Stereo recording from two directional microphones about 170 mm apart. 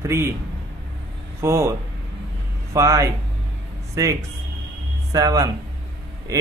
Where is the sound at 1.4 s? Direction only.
15° right (ahead or behind).